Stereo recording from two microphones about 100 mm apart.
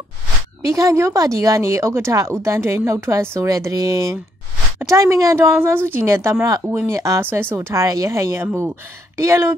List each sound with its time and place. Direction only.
0.6 s speech: 30° right (ahead or behind)